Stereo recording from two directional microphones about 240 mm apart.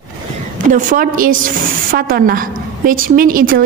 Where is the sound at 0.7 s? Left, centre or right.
Right.